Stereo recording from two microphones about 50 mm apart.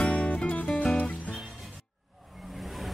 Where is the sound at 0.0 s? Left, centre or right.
Left.